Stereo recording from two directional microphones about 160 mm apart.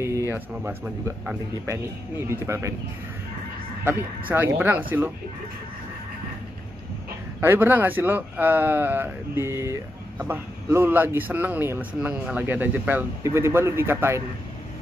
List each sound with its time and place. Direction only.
0.3 s speech: 15° right (ahead or behind)
3.8 s speech: 15° right (ahead or behind)
7.3 s speech: 10° right (ahead or behind)